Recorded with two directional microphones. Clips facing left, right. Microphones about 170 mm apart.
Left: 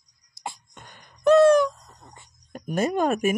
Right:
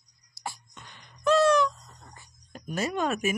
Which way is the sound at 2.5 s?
50° left (ahead or behind).